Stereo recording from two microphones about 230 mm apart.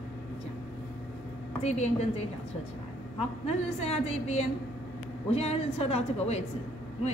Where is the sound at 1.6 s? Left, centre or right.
Left.